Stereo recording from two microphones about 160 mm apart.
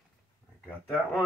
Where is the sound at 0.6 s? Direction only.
5° left (ahead or behind).